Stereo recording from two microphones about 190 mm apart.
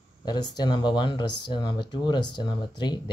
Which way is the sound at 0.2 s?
20° left (ahead or behind).